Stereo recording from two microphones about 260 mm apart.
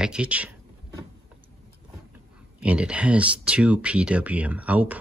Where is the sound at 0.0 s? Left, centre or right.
Centre.